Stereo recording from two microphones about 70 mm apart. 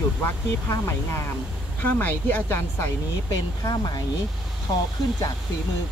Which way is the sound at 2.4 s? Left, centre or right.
Left.